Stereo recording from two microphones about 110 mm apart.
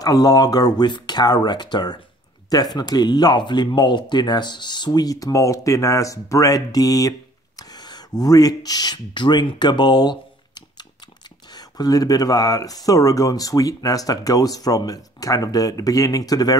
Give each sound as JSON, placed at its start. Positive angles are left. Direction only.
{"t": 0.0, "sound": "speech", "side_deg": 35}
{"t": 11.5, "sound": "speech", "side_deg": 35}